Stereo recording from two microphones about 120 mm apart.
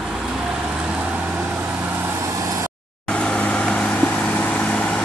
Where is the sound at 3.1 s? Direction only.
10° left (ahead or behind).